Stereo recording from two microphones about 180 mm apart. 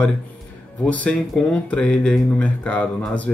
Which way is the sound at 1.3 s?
5° left (ahead or behind).